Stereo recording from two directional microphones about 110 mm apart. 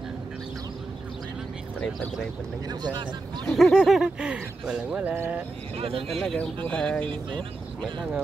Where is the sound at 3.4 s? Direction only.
5° left (ahead or behind); by 5.5 s 15° right (ahead or behind).